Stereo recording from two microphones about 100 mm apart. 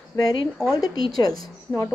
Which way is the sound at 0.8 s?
40° left (ahead or behind).